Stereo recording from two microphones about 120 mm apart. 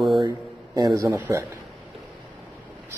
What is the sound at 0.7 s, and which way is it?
Speech, 30° right (ahead or behind).